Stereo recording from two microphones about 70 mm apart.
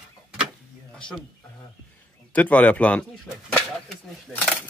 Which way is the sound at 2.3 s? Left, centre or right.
Left.